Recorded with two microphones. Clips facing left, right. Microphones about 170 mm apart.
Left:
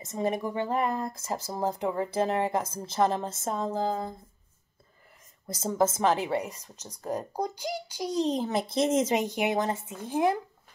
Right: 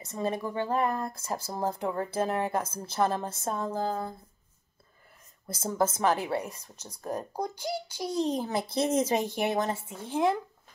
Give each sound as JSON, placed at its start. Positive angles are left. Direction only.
{"t": 0.0, "sound": "speech", "side_deg": 20}
{"t": 5.5, "sound": "a child's voice", "side_deg": 20}